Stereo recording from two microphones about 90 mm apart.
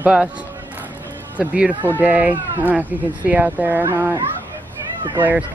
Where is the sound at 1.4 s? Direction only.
15° right (ahead or behind).